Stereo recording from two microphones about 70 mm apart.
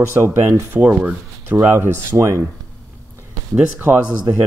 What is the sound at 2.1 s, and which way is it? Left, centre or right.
Speech, right.